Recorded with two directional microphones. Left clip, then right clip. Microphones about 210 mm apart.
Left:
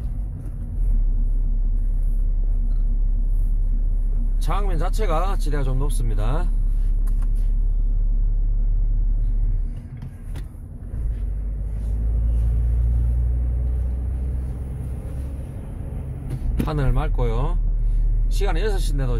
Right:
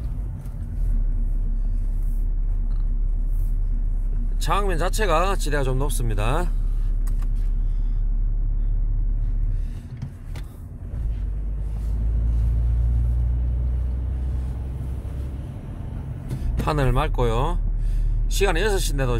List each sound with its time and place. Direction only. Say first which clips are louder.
4.4 s speech: right 5 dB; 25° right (ahead or behind)
16.6 s speech: right 6 dB; 30° right (ahead or behind)